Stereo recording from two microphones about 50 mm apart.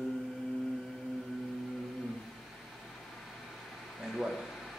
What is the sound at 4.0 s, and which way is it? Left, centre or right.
Speech, centre.